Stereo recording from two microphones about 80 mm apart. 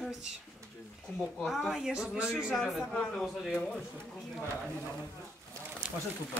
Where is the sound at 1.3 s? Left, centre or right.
Centre.